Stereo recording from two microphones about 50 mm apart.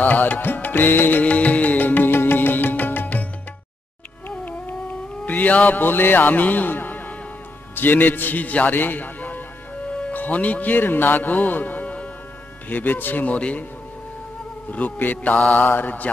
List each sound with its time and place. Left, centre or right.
0.0 s music: left
1.2 s music: left
5.2 s a man's voice: left
12.6 s music: left
14.7 s music: left